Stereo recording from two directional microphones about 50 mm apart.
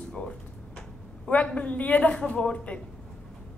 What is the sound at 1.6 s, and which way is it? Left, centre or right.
Speech, left.